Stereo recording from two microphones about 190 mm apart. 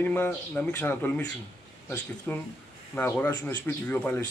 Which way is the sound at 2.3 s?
5° left (ahead or behind).